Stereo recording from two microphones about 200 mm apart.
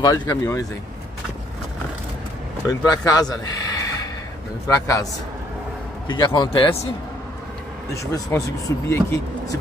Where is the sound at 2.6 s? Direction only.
20° left (ahead or behind).